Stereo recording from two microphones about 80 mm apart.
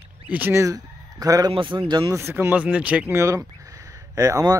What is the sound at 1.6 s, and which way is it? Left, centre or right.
Speech, right.